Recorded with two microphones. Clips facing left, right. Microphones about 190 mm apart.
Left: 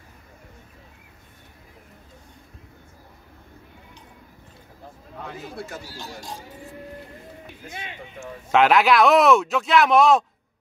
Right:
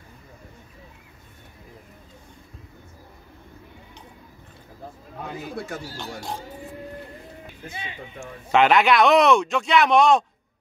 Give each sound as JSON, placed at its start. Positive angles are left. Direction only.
{"t": 5.7, "sound": "speech", "side_deg": -60}
{"t": 8.5, "sound": "speech", "side_deg": 0}